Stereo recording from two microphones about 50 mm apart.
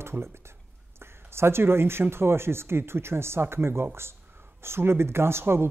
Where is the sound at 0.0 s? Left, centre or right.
Right.